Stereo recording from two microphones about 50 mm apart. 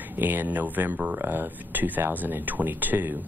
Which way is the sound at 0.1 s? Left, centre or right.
Right.